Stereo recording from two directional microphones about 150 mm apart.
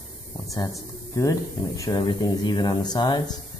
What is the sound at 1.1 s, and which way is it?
Speech, 20° left (ahead or behind).